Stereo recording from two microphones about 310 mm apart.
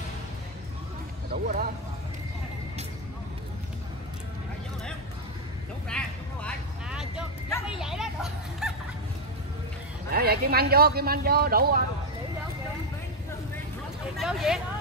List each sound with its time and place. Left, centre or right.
1.3 s speech: right
5.9 s vehicle: centre
7.6 s a sound: centre
10.1 s speech: right
14.1 s speech: centre